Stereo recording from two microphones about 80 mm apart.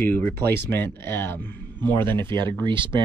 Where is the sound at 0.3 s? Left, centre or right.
Left.